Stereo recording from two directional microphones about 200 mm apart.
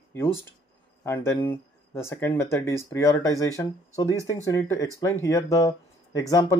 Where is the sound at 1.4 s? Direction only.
10° left (ahead or behind).